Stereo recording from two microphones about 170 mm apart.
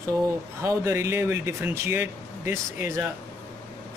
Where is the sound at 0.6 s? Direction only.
15° right (ahead or behind).